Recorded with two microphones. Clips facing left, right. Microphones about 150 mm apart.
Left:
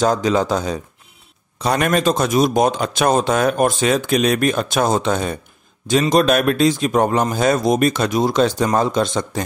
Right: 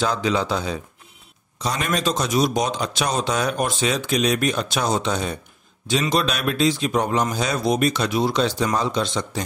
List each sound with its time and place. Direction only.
0.0 s a man's voice: 45° left (ahead or behind)
1.6 s a man's voice: 60° left (ahead or behind)